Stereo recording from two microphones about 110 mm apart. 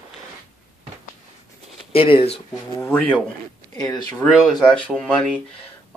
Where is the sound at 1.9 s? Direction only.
55° left (ahead or behind).